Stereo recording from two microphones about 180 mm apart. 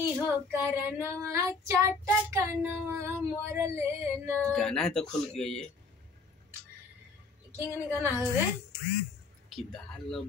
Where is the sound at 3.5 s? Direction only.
15° right (ahead or behind).